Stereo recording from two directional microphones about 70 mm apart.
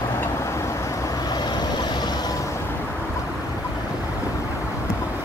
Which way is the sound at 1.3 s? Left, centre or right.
Left.